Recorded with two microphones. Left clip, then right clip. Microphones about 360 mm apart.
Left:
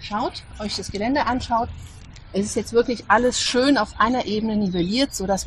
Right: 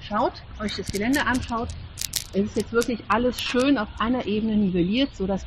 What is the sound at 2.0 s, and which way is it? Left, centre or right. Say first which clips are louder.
Scissors: right 17 dB; right.